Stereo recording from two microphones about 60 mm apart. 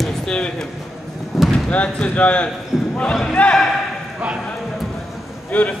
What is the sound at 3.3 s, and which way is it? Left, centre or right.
Speech, left.